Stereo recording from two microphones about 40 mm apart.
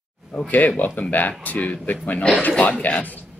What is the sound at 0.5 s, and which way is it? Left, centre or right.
Speech, left.